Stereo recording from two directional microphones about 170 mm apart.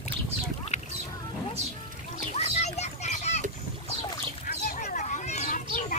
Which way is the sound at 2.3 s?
40° left (ahead or behind).